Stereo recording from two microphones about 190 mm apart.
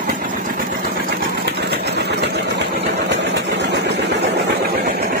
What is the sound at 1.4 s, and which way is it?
Engine, 60° right (ahead or behind).